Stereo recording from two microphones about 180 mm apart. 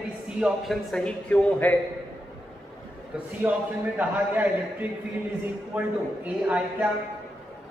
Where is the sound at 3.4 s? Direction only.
10° right (ahead or behind).